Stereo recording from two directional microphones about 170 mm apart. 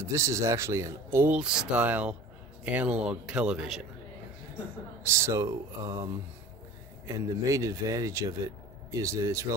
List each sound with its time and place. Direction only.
0.0 s speech: 15° right (ahead or behind)
5.0 s speech: 15° right (ahead or behind)
7.1 s speech: 20° right (ahead or behind)